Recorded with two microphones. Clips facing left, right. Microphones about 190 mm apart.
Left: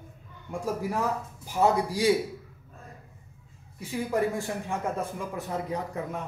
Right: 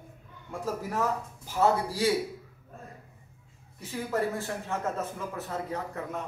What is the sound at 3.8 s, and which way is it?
Speech, 15° left (ahead or behind).